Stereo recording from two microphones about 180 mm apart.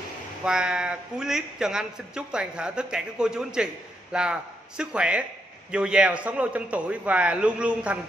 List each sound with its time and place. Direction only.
0.4 s a man's voice: 5° right (ahead or behind)